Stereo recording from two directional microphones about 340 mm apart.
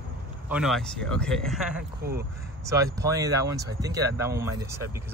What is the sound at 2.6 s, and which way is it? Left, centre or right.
Speech, centre.